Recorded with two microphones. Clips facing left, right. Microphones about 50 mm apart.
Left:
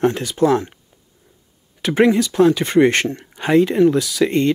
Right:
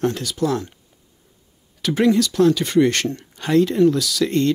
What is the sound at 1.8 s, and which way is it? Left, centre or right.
Speech, left.